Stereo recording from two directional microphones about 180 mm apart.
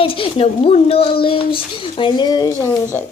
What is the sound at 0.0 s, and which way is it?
A woman's voice, 30° left (ahead or behind).